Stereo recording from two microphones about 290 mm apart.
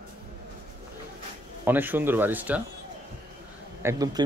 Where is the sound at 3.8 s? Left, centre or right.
Centre.